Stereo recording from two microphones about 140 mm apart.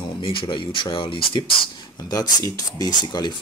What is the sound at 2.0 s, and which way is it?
Speech, 25° left (ahead or behind).